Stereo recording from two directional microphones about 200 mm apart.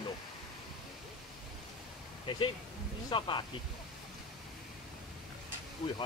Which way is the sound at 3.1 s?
25° left (ahead or behind).